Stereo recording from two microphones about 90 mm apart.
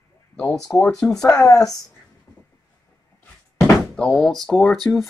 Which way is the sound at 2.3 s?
35° left (ahead or behind).